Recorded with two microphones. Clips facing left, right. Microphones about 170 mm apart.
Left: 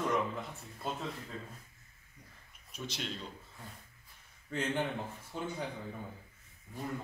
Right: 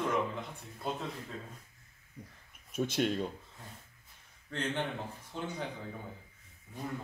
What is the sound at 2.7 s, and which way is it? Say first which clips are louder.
Speech: right 10 dB; 50° right (ahead or behind).